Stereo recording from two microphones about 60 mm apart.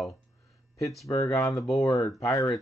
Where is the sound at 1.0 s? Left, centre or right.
Left.